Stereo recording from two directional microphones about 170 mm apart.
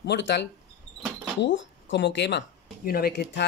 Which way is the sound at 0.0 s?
90° left.